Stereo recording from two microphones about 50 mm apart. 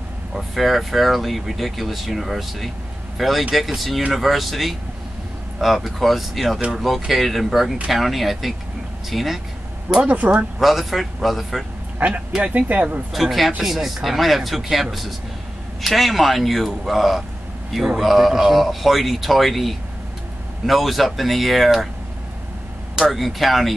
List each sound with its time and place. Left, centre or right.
0.3 s speech: centre
9.9 s speech: right
10.6 s speech: centre
12.4 s speech: right
13.1 s speech: centre
22.9 s speech: centre